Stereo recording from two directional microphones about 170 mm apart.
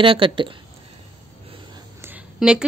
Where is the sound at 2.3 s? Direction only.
5° right (ahead or behind).